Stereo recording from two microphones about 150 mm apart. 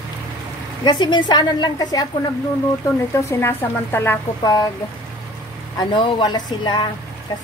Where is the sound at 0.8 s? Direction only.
30° left (ahead or behind).